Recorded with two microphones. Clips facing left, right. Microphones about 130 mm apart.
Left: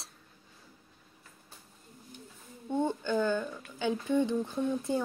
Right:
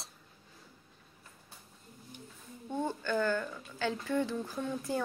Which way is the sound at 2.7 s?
20° left (ahead or behind).